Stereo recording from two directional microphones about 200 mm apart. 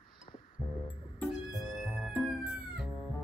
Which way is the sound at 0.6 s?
25° left (ahead or behind).